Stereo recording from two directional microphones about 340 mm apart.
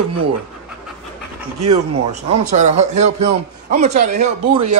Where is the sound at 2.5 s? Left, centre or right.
Centre.